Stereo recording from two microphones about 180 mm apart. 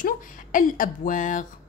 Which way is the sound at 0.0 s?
50° left (ahead or behind).